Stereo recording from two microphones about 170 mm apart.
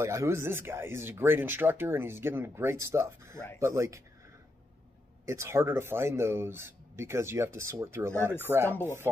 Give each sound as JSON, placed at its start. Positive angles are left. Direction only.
{"t": 0.0, "sound": "speech", "side_deg": -15}
{"t": 5.2, "sound": "speech", "side_deg": -15}